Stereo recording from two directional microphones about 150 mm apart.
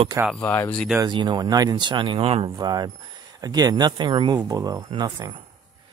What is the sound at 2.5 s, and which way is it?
Speech, 25° right (ahead or behind).